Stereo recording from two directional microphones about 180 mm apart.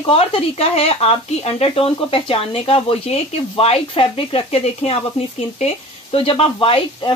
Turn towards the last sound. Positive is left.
turn(degrees=30)  # may be behind; listen again after turning